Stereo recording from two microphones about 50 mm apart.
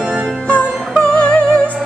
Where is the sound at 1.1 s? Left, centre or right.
Left.